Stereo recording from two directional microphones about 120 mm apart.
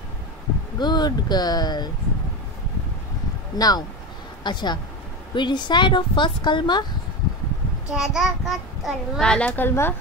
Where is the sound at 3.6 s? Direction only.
35° left (ahead or behind).